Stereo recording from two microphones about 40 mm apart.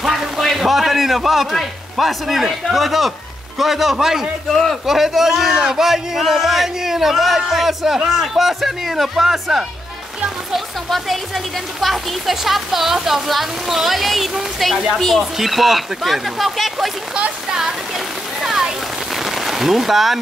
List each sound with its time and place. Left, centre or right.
0.4 s a man's voice: centre
17.5 s a sound: centre
19.1 s rain on surface: centre